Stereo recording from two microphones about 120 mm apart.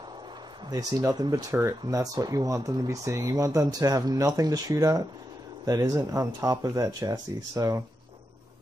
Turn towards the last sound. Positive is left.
turn(degrees=-30)  # may be behind; listen again after turning